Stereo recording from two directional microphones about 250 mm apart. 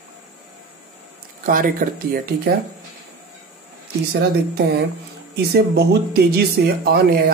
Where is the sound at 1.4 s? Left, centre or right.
Right.